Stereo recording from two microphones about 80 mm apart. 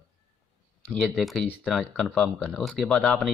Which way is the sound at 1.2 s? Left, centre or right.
Centre.